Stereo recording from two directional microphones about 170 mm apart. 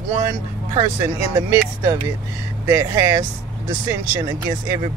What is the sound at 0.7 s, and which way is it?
Speech, 20° right (ahead or behind).